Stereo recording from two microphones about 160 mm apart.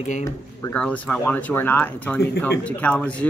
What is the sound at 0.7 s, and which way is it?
Speech, 10° left (ahead or behind).